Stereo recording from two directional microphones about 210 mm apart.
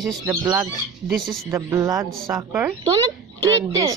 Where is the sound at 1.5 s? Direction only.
15° right (ahead or behind).